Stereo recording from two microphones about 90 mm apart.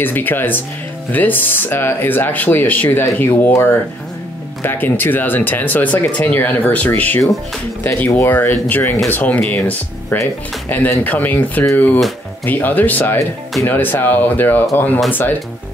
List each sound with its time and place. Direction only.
0.0 s speech: 20° left (ahead or behind)